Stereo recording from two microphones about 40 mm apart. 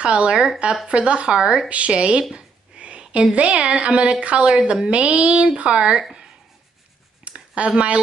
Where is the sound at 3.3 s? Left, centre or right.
Right.